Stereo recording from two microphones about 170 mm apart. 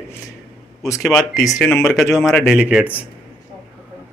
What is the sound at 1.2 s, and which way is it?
Speech, 20° left (ahead or behind).